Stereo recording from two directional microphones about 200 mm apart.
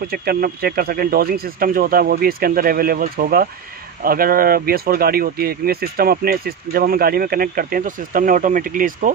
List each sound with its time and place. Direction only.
0.1 s speech: 50° right (ahead or behind)